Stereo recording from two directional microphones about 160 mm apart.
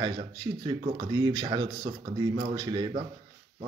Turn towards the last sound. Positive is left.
turn(degrees=-25)  # may be behind; listen again after turning